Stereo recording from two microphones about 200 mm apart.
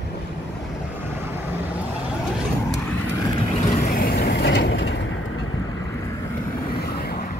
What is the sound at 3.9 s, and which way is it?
Vehicle, 50° left (ahead or behind).